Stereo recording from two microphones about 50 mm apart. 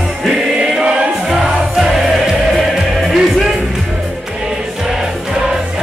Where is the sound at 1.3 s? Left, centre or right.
Centre.